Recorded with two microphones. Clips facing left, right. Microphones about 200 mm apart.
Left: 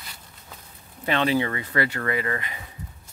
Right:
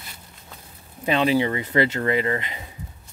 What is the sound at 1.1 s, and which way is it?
Speech, 15° right (ahead or behind).